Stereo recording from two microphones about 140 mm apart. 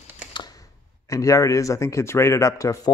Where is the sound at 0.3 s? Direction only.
30° left (ahead or behind).